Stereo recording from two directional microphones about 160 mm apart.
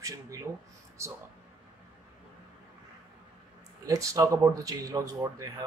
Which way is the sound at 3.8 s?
20° right (ahead or behind).